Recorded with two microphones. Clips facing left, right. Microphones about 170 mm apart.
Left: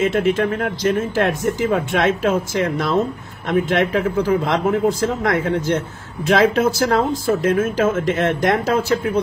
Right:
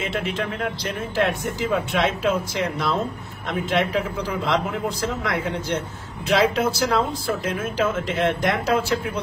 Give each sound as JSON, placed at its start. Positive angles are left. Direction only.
{"t": 0.0, "sound": "speech", "side_deg": 45}